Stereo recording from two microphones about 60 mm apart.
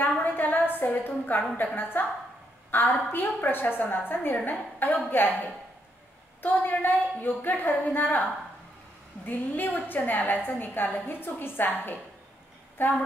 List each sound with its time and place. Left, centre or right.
0.0 s a sound: left
1.8 s a woman's voice: left
6.4 s a woman's voice: left